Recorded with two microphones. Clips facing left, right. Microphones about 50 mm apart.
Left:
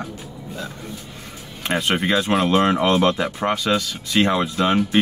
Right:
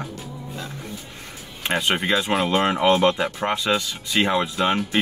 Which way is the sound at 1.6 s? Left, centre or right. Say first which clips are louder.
Left 1 dB; centre.